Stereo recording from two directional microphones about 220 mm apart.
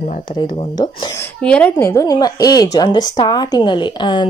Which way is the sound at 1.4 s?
5° left (ahead or behind).